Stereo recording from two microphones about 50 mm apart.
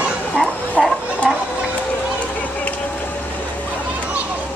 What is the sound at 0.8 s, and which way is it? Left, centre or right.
Children playing, centre.